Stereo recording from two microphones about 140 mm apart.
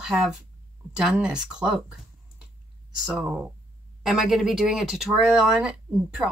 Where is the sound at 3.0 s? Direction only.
5° right (ahead or behind).